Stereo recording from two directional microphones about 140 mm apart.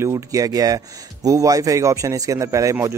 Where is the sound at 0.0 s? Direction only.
25° right (ahead or behind).